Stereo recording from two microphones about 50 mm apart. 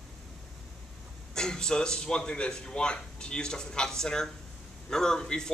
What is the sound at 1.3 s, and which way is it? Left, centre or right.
A man's voice, centre.